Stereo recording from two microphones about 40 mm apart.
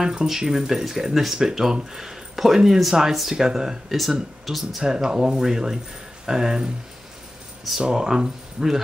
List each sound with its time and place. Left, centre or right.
0.0 s speech: centre
4.1 s speech: centre
4.8 s speech: centre
7.8 s speech: centre